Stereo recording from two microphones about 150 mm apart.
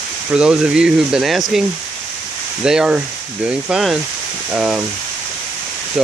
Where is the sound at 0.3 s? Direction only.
5° right (ahead or behind).